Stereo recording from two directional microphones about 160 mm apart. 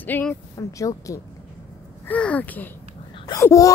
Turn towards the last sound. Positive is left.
turn(degrees=20)  # may be behind; listen again after turning